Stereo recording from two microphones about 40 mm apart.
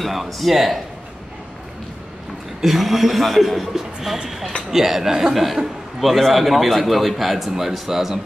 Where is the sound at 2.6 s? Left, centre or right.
Centre.